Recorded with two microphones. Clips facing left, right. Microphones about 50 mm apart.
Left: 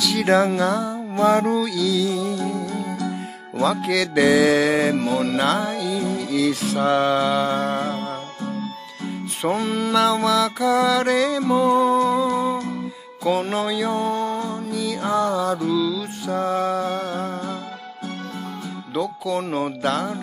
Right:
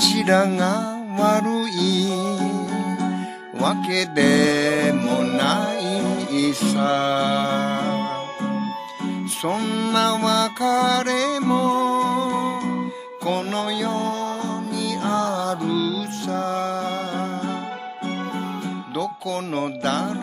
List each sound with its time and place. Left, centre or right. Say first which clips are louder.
0.0 s music: even; centre
3.6 s speech: left 1 dB; centre
7.9 s music: right 3 dB; right
9.4 s speech: left 2 dB; centre
12.5 s music: right 2 dB; right
13.2 s music: left 2 dB; centre
18.9 s speech: left 3 dB; centre